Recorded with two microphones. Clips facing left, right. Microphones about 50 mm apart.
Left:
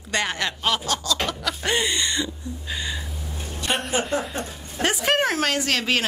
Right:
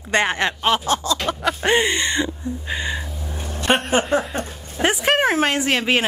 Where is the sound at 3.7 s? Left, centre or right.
Centre.